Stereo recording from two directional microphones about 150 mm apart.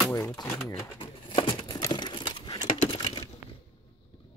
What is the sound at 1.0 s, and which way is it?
Crumpling, 35° left (ahead or behind).